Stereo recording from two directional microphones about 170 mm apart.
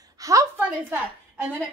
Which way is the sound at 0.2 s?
20° right (ahead or behind).